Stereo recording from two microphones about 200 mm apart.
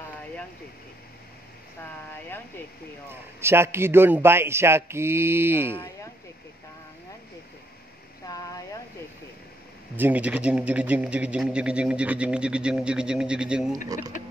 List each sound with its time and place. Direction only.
2.2 s speech: 10° left (ahead or behind)
3.1 s a man's voice: 10° right (ahead or behind)
8.3 s speech: 15° left (ahead or behind)
9.9 s a man's voice: 10° right (ahead or behind)